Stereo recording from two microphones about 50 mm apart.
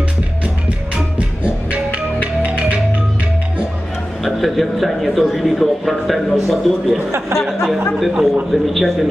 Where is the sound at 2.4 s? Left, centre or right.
Right.